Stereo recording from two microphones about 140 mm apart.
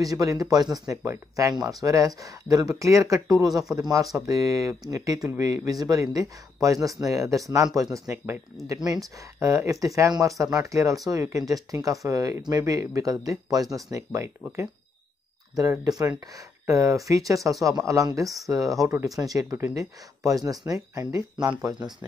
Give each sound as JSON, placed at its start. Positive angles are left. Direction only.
{"t": 0.0, "sound": "speech", "side_deg": -25}
{"t": 15.5, "sound": "speech", "side_deg": -25}